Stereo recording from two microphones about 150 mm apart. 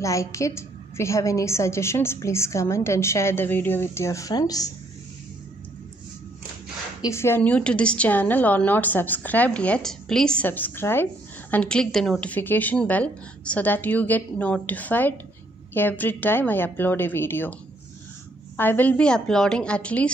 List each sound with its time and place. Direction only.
0.0 s a woman's voice: 20° left (ahead or behind)
7.0 s a woman's voice: 20° left (ahead or behind)
18.6 s a woman's voice: 10° left (ahead or behind)